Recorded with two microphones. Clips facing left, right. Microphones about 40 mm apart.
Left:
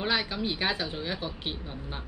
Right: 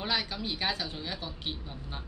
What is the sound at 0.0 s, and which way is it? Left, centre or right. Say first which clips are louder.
Speech: left 4 dB; centre.